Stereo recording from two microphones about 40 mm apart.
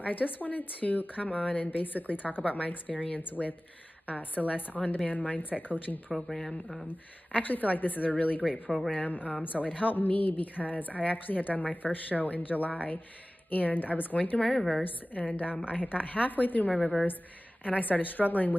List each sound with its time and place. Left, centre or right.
0.0 s speech: left
3.2 s speech: left
6.1 s speech: centre
7.3 s speech: left
8.4 s speech: centre
8.9 s speech: left
14.4 s a woman's voice: centre
15.2 s speech: left
16.7 s speech: centre
17.6 s speech: left